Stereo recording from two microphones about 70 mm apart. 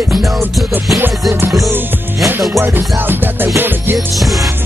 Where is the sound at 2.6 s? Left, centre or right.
Right.